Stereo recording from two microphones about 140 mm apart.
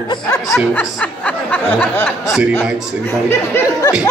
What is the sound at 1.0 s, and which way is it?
Speech, 10° left (ahead or behind).